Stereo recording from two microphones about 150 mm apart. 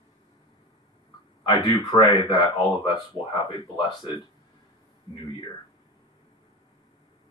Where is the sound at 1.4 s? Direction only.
30° left (ahead or behind).